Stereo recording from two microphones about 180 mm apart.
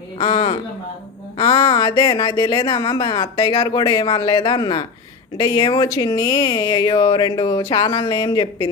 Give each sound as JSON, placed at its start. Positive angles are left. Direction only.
{"t": 0.2, "sound": "a woman's voice", "side_deg": 30}